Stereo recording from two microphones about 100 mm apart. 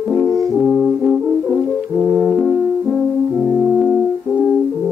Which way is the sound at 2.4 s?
10° left (ahead or behind).